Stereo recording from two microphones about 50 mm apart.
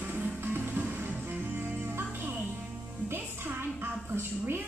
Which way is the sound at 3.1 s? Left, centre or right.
Right.